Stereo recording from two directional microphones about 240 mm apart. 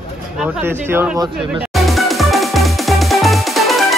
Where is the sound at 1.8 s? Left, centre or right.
Centre.